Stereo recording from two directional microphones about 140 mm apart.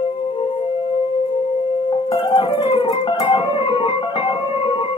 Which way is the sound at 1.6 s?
40° left (ahead or behind).